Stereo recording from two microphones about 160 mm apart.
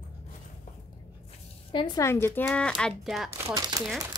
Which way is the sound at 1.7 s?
30° left (ahead or behind).